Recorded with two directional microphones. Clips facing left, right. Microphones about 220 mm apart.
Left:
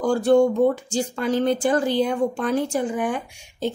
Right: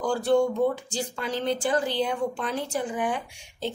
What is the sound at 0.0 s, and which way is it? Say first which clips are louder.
A woman's voice: left 5 dB; 45° left (ahead or behind).